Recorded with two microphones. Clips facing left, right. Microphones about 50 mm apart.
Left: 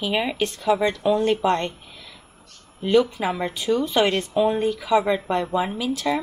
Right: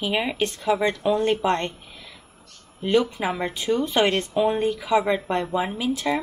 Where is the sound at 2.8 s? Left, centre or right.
Centre.